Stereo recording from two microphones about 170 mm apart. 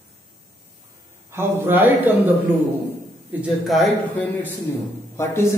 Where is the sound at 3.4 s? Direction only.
Centre (ahead or behind).